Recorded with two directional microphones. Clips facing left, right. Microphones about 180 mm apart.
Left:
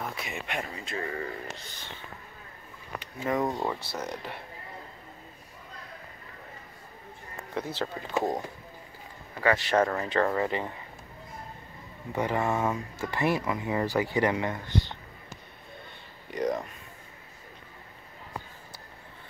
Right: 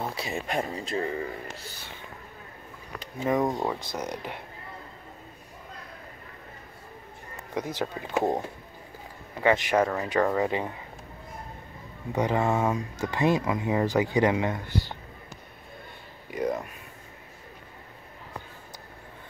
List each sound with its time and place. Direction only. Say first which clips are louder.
0.0 s speech: right 4 dB; 30° right (ahead or behind)
1.0 s speech: right 3 dB; 20° right (ahead or behind)
3.2 s speech: right 3 dB; 20° right (ahead or behind)
7.5 s speech: right 2 dB; 15° right (ahead or behind)
12.1 s speech: right 3 dB; 15° right (ahead or behind)
16.3 s speech: even; 5° right (ahead or behind)